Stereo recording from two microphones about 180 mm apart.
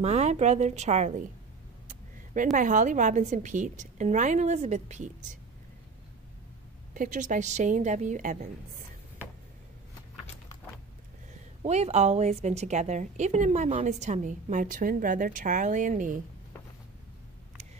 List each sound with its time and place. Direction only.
0.0 s a woman's voice: 40° right (ahead or behind)
2.5 s a woman's voice: 45° right (ahead or behind)
6.9 s a woman's voice: 45° right (ahead or behind)
11.6 s a woman's voice: 35° right (ahead or behind)